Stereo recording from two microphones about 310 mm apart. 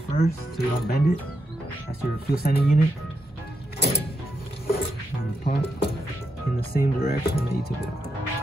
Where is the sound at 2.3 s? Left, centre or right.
Left.